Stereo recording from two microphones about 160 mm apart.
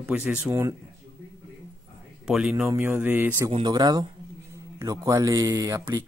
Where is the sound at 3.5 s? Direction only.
25° right (ahead or behind).